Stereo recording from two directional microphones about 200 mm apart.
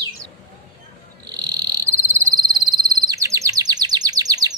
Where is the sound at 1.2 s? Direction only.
20° right (ahead or behind).